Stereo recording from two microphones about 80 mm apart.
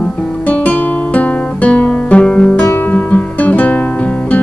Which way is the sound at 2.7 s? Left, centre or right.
Left.